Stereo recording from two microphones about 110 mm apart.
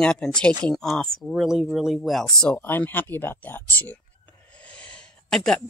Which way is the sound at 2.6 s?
20° left (ahead or behind).